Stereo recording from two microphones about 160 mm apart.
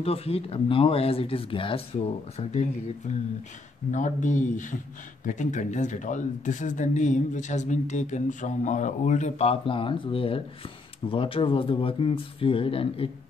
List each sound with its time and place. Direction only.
0.0 s speech: 40° left (ahead or behind)